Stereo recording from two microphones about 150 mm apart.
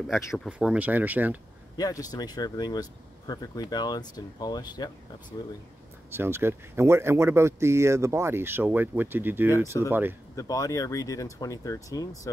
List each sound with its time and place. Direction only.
0.5 s speech: 5° right (ahead or behind)
1.8 s speech: 25° left (ahead or behind)
6.1 s speech: 15° right (ahead or behind)
10.3 s speech: 25° left (ahead or behind)